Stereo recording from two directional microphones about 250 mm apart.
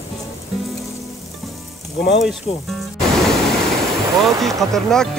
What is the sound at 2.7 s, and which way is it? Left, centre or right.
Music, centre.